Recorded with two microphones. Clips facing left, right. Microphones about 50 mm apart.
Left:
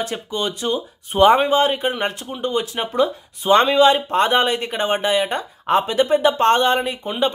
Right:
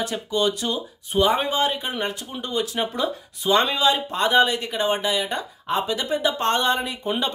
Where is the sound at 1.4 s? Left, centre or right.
Left.